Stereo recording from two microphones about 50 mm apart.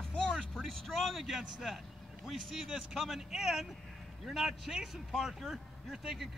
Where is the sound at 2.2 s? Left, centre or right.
Centre.